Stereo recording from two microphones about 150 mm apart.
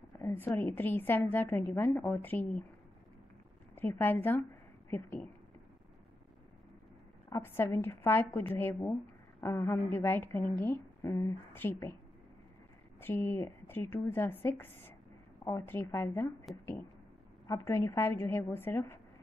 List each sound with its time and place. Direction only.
0.2 s a woman's voice: 15° left (ahead or behind)
3.7 s a woman's voice: 15° left (ahead or behind)
7.2 s a woman's voice: 15° left (ahead or behind)
13.0 s a woman's voice: 15° left (ahead or behind)
16.5 s a woman's voice: centre (ahead or behind)
17.5 s a woman's voice: 20° left (ahead or behind)